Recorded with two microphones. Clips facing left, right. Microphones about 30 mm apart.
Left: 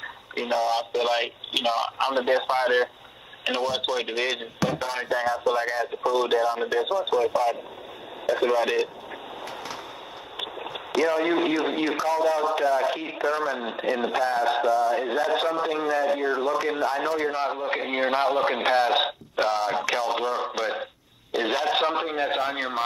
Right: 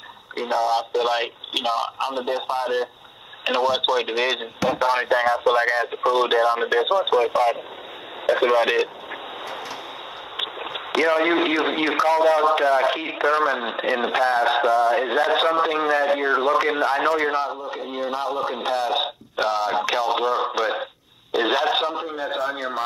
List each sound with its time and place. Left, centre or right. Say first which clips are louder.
0.3 s speech: right 3 dB; centre
2.2 s speech: left 3 dB; left
3.4 s speech: right 5 dB; centre
5.1 s speech: right 2 dB; right
10.3 s speech: right 4 dB; right
17.5 s a man's voice: left 3 dB; left
19.3 s a man's voice: right 3 dB; centre
21.9 s a man's voice: left 2 dB; left
22.3 s speech: right 1 dB; left